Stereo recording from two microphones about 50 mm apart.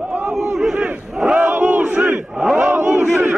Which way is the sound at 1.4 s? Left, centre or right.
Right.